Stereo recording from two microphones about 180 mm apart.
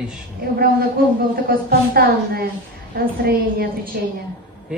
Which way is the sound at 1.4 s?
55° right (ahead or behind).